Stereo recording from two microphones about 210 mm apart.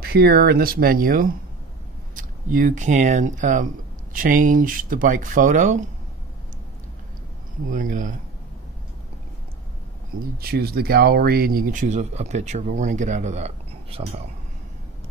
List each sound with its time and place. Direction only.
0.0 s speech: 50° right (ahead or behind)
7.7 s speech: 40° right (ahead or behind)
10.4 s speech: 50° right (ahead or behind); by 14.0 s 30° right (ahead or behind)